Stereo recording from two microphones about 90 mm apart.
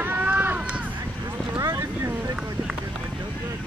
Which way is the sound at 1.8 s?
35° right (ahead or behind).